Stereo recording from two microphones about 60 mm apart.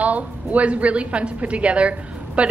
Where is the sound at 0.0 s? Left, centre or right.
Right.